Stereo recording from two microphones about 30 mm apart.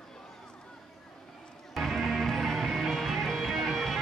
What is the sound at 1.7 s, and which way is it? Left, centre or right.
Music, centre.